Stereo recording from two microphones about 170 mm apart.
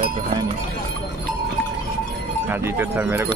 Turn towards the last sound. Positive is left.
turn(degrees=-10)  # may be behind; listen again after turning